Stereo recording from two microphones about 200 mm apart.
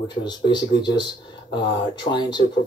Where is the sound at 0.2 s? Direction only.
20° left (ahead or behind).